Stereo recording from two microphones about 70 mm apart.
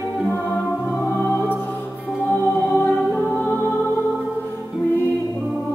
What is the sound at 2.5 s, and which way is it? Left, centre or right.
Music, left.